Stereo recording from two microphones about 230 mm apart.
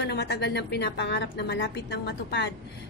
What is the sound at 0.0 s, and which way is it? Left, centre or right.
A woman's voice, left.